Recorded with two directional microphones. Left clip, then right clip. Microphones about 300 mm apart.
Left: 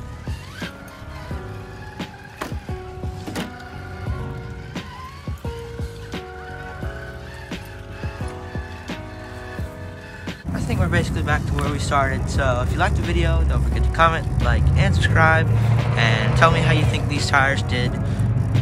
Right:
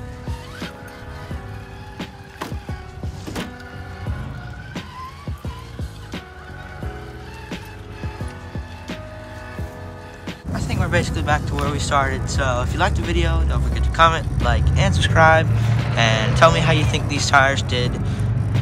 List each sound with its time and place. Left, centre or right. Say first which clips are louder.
2.0 s music: even; centre
10.2 s speech: even; centre